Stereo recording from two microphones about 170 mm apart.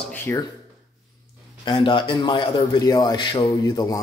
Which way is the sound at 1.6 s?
30° left (ahead or behind).